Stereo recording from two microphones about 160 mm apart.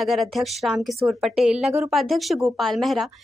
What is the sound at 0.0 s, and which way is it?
Speech, centre (ahead or behind).